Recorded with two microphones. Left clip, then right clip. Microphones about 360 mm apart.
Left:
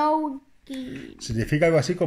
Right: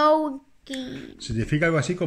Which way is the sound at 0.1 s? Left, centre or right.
Right.